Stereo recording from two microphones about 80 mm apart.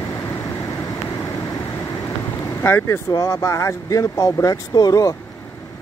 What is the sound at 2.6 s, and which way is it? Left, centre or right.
Speech, left.